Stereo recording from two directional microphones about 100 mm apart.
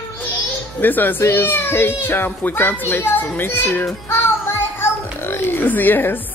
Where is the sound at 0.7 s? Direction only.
20° left (ahead or behind).